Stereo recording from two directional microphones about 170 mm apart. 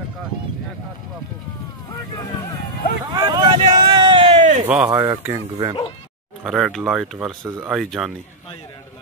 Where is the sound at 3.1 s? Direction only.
25° right (ahead or behind); by 4.7 s 45° right (ahead or behind).